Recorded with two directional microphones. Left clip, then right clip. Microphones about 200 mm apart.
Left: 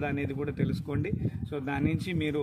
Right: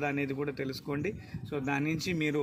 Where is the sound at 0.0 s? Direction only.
5° left (ahead or behind).